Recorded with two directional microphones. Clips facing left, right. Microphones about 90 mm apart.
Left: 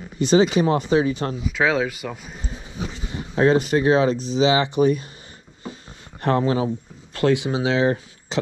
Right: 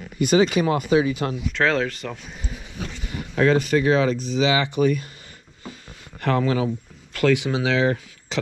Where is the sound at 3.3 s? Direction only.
25° left (ahead or behind).